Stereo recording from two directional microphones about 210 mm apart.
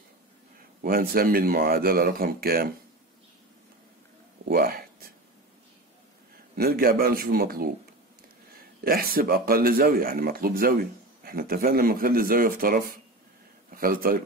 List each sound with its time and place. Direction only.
0.8 s speech: 45° right (ahead or behind)
4.5 s a sound: 45° right (ahead or behind)
6.5 s speech: 45° right (ahead or behind)
8.8 s speech: 45° right (ahead or behind)